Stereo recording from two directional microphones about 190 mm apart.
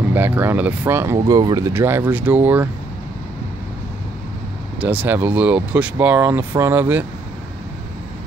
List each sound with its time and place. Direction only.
0.1 s speech: 10° right (ahead or behind)
4.7 s speech: 10° right (ahead or behind)